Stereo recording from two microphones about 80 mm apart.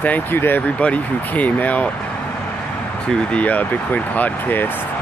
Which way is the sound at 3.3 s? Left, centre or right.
Centre.